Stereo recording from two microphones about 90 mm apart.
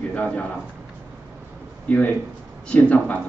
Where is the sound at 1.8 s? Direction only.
15° left (ahead or behind).